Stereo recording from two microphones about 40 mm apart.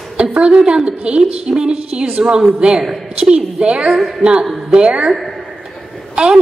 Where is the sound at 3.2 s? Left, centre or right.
Right.